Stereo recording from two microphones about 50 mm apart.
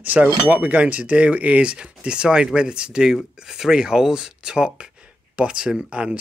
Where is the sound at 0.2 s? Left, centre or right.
Right.